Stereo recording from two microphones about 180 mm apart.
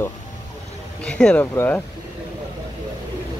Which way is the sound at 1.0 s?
5° left (ahead or behind).